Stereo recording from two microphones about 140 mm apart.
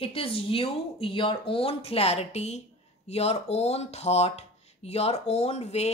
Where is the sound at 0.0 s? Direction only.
45° left (ahead or behind).